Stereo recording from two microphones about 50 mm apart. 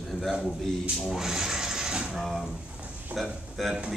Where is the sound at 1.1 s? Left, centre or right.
Centre.